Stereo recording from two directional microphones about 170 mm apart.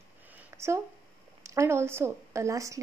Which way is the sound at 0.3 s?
15° right (ahead or behind).